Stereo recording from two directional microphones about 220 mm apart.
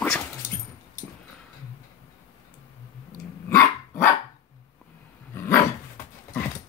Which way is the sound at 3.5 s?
10° left (ahead or behind).